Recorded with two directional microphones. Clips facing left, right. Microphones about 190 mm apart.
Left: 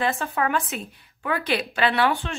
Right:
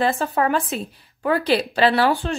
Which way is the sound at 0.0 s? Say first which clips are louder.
Right 4 dB; 35° right (ahead or behind).